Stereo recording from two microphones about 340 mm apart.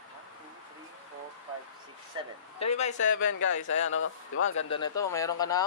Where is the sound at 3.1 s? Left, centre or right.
Left.